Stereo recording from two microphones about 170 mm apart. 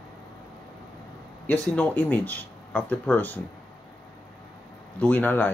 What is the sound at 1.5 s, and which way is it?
Speech, 10° left (ahead or behind).